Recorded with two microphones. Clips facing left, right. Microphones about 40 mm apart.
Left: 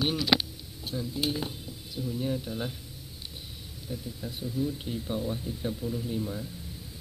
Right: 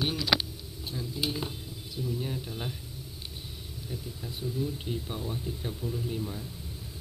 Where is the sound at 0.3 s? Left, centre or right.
Centre.